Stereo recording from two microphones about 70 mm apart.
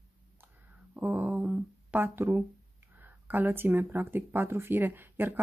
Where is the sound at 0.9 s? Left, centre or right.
Right.